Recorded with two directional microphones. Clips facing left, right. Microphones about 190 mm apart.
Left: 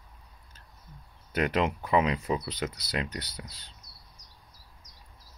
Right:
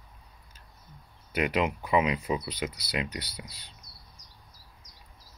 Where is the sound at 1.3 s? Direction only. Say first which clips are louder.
Even; 10° right (ahead or behind).